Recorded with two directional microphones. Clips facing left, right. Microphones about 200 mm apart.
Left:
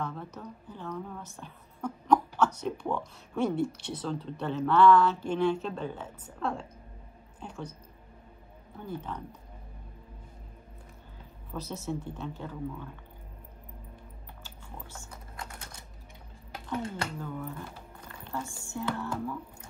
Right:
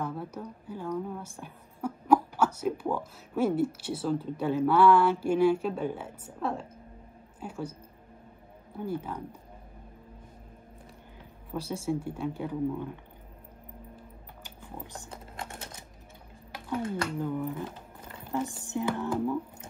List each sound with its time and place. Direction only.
0.0 s a woman's voice: 10° right (ahead or behind)
8.7 s a woman's voice: 10° right (ahead or behind)
11.5 s a woman's voice: 10° right (ahead or behind)
14.4 s typing: 15° right (ahead or behind)
17.2 s speech: 15° right (ahead or behind)